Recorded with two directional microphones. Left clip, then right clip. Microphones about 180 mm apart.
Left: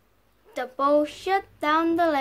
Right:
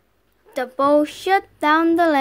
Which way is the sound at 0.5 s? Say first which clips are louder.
Right 5 dB; 25° right (ahead or behind).